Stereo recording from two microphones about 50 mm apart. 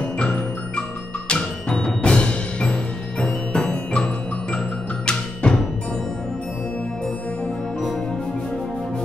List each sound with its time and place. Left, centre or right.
0.2 s music: left